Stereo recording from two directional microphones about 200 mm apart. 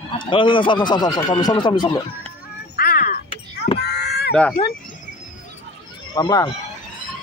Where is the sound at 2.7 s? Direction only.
45° left (ahead or behind).